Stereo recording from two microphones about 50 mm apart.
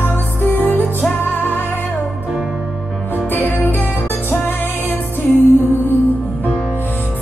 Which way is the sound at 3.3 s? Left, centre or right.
Left.